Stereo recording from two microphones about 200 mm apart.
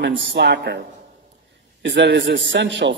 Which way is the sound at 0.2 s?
60° right (ahead or behind).